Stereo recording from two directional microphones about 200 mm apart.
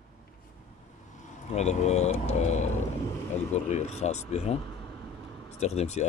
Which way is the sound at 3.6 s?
35° left (ahead or behind).